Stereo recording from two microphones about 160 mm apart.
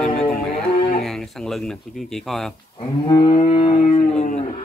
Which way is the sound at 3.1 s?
25° left (ahead or behind).